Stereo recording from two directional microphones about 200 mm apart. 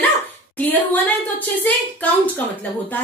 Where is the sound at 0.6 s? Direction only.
10° left (ahead or behind).